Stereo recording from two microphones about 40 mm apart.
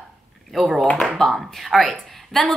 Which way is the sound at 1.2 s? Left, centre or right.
Centre.